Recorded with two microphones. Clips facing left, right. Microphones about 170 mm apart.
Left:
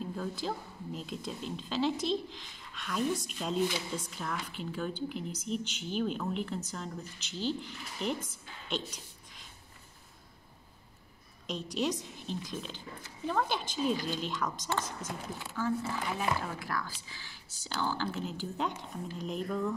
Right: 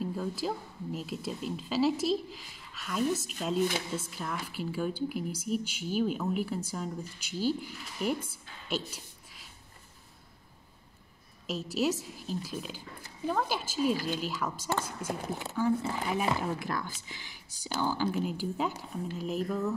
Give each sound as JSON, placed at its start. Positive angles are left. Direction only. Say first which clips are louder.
{"t": 0.0, "sound": "a woman's voice", "louder": "right 3 dB", "side_deg": -5}
{"t": 11.4, "sound": "a woman's voice", "louder": "right 3 dB", "side_deg": -5}